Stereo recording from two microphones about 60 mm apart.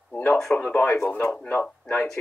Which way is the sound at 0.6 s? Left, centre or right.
Left.